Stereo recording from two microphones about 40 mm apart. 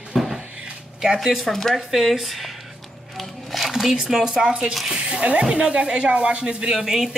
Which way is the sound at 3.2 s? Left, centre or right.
Centre.